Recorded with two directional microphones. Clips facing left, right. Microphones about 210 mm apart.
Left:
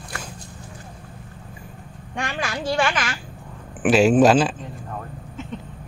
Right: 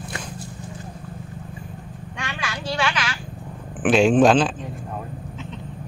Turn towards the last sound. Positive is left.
turn(degrees=5)  # may be behind; listen again after turning